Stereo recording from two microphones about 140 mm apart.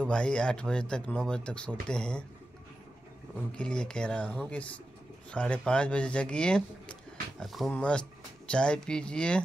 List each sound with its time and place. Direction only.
0.0 s speech: 5° left (ahead or behind)
3.5 s speech: 5° left (ahead or behind)